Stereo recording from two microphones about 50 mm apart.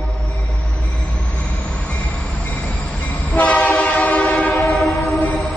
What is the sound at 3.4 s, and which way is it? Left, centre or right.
Train, left.